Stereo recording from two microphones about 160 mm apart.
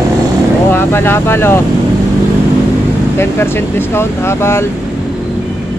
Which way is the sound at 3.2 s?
15° left (ahead or behind).